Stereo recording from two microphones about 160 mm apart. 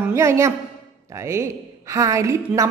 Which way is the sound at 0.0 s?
15° right (ahead or behind).